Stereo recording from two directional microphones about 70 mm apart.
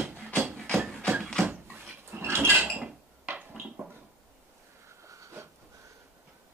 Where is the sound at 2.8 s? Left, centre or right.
Centre.